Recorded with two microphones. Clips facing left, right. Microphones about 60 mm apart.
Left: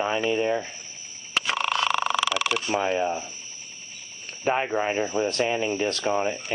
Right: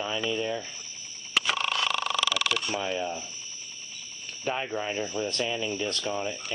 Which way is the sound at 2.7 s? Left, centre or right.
Left.